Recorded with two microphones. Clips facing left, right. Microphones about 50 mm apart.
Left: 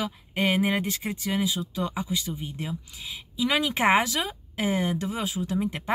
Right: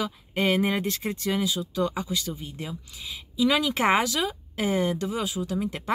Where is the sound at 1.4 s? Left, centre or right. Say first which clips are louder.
Right 2 dB; left.